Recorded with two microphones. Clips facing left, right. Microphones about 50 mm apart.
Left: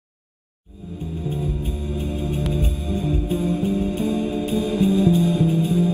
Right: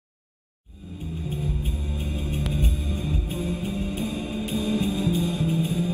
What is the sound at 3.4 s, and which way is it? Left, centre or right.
Music, left.